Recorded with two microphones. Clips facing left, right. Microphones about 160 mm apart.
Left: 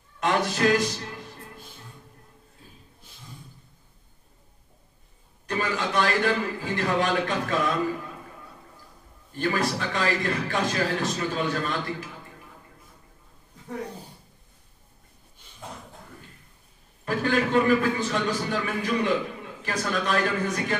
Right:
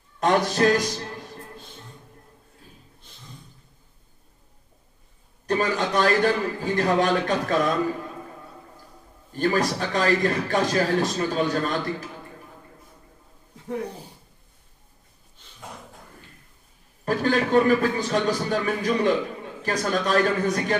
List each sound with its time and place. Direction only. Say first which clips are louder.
0.2 s a man's voice: right 3 dB; 40° right (ahead or behind)
5.5 s a man's voice: right 4 dB; 40° right (ahead or behind)
9.3 s a man's voice: right 3 dB; 40° right (ahead or behind)
17.0 s a man's voice: right 2 dB; 40° right (ahead or behind)